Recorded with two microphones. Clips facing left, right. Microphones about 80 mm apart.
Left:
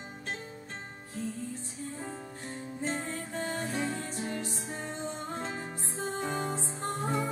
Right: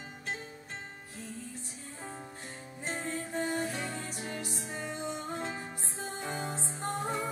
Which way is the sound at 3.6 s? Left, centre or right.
Left.